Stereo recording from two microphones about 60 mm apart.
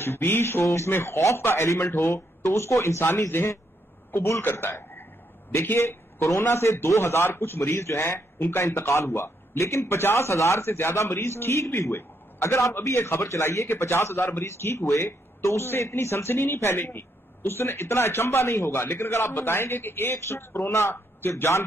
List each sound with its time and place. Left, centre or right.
0.0 s a man's voice: left
2.4 s a man's voice: left
13.7 s a man's voice: left